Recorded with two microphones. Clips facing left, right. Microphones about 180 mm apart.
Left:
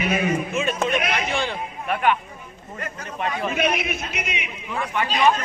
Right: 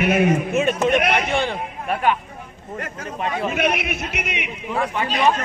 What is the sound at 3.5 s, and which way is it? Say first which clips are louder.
Speech: right 1 dB; 60° right (ahead or behind).